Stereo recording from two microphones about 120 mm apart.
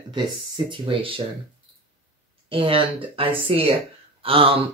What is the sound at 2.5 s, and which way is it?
Speech, 50° right (ahead or behind).